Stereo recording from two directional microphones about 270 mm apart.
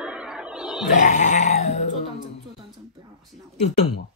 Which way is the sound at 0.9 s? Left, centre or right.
Left.